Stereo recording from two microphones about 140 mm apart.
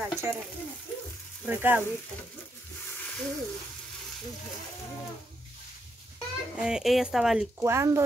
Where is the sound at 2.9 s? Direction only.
10° left (ahead or behind).